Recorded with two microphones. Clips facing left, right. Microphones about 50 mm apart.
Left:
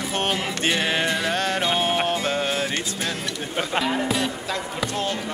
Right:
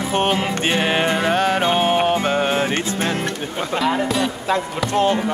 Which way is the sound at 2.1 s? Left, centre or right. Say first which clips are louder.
Right 5 dB; right.